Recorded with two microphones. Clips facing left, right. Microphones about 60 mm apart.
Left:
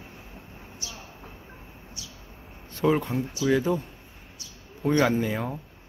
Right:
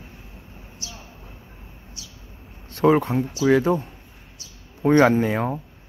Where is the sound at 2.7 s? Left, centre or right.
Right.